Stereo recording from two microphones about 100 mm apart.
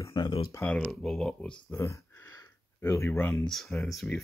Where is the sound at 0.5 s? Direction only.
10° left (ahead or behind).